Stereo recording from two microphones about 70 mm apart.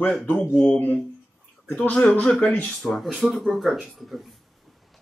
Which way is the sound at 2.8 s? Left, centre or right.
Centre.